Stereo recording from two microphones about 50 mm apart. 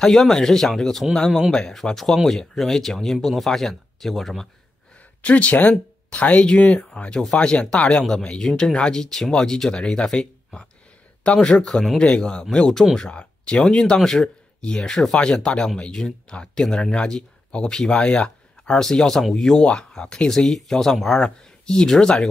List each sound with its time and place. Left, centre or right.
0.0 s speech: centre
4.9 s speech: left
7.1 s speech: centre
7.3 s speech: centre
11.2 s speech: centre
11.5 s speech: centre
12.0 s speech: centre
13.1 s a sound: left
13.6 s speech: centre